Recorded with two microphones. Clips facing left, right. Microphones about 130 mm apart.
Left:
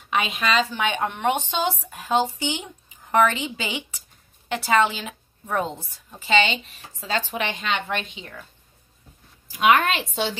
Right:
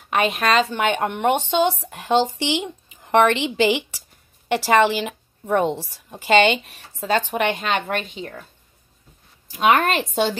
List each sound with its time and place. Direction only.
0.1 s a woman's voice: 50° right (ahead or behind)
9.5 s a woman's voice: 35° right (ahead or behind)